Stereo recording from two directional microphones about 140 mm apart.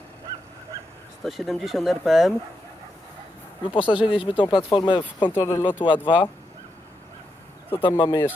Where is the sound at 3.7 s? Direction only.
40° left (ahead or behind).